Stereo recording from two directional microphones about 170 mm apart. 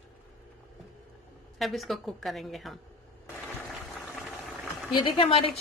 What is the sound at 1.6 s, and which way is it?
A woman's voice, centre (ahead or behind).